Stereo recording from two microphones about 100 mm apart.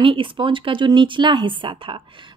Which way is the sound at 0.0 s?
60° right (ahead or behind).